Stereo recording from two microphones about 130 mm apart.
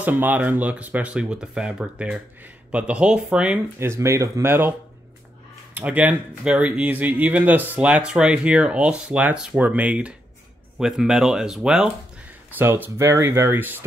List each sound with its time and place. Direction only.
0.0 s speech: 15° right (ahead or behind)
3.8 s speech: 20° right (ahead or behind)
5.8 s speech: 10° right (ahead or behind)